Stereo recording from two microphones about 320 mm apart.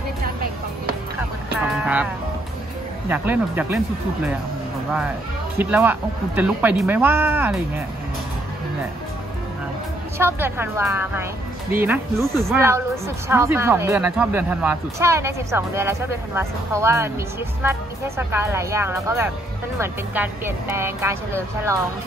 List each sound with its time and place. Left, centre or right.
0.2 s music: right
1.6 s music: centre
3.1 s a man's voice: centre
5.6 s a man's voice: centre
10.1 s speech: centre